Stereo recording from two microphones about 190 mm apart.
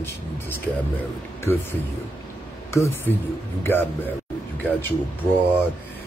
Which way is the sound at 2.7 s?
15° left (ahead or behind).